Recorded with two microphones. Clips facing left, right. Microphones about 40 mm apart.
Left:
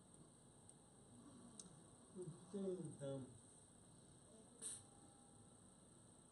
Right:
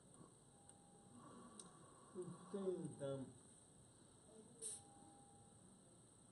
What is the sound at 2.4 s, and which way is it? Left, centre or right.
Speech, centre.